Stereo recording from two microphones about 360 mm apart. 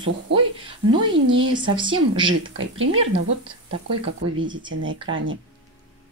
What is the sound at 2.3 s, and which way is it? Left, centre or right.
Speech, right.